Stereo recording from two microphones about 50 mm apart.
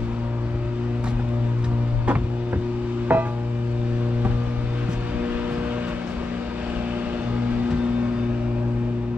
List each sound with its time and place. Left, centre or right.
3.1 s music: right